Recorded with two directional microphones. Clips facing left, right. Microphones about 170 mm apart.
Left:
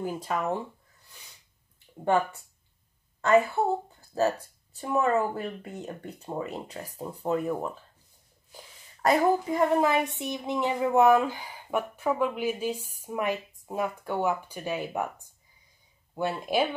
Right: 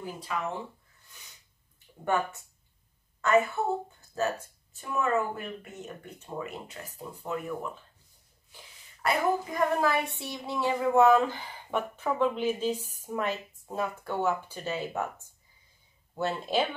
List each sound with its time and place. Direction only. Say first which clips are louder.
0.0 s speech: left 5 dB; 45° left (ahead or behind)
3.2 s a woman's voice: left 2 dB; 30° left (ahead or behind)
4.7 s speech: left 3 dB; 35° left (ahead or behind)
9.0 s speech: left 5 dB; 40° left (ahead or behind)
9.5 s speech: left 3 dB; 20° left (ahead or behind)